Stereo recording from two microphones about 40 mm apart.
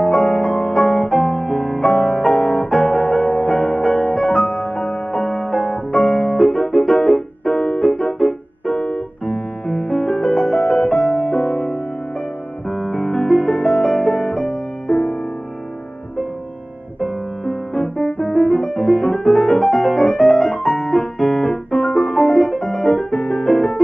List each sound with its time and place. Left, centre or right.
0.0 s music: centre
2.3 s piano: centre
9.2 s music: centre
17.0 s music: centre